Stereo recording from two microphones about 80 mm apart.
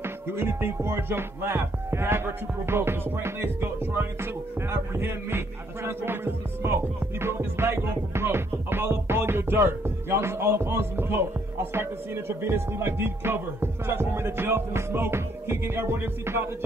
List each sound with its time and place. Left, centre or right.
0.0 s music: right